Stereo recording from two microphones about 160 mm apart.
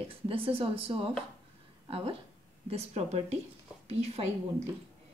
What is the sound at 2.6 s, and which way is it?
A woman's voice, 40° right (ahead or behind).